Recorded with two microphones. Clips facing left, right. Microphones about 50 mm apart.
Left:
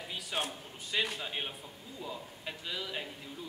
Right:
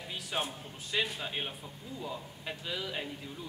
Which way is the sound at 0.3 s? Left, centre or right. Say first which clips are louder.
Right 1 dB; centre.